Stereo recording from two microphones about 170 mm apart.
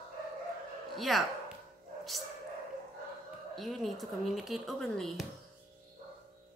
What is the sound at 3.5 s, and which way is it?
Speech, centre (ahead or behind).